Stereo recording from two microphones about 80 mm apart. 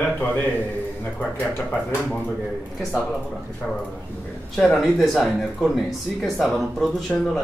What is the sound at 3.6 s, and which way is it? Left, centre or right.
Speech, centre.